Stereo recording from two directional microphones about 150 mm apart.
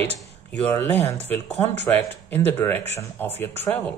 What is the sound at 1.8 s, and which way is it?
Speech, 10° left (ahead or behind).